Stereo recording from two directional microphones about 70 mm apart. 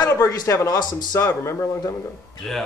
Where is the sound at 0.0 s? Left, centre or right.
Left.